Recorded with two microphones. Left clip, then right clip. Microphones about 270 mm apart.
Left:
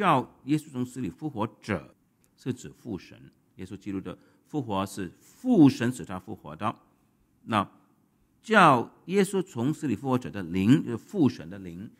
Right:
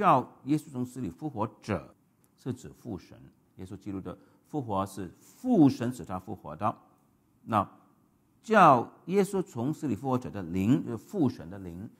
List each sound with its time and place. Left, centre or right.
0.0 s a man's voice: centre
8.5 s a man's voice: centre